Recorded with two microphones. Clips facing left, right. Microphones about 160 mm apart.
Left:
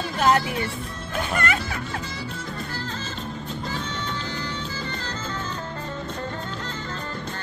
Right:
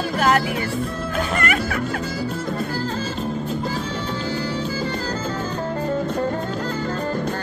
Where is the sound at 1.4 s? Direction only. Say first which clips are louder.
Right 4 dB; 25° left (ahead or behind).